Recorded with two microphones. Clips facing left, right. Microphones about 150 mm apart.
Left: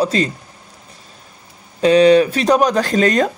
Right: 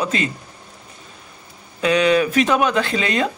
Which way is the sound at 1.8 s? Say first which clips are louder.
Left 6 dB; 35° left (ahead or behind).